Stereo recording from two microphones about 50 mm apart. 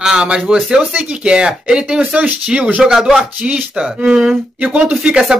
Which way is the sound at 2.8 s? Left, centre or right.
Centre.